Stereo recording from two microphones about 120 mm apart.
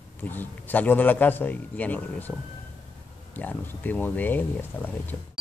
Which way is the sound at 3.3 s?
15° left (ahead or behind).